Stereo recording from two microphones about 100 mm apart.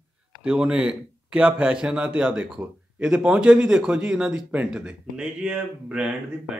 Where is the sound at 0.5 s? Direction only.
10° right (ahead or behind).